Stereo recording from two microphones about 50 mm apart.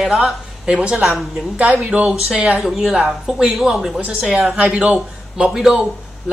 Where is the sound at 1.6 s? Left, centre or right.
Right; by 5.8 s centre.